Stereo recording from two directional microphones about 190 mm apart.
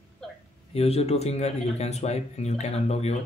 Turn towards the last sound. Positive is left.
turn(degrees=35)  # may be behind; listen again after turning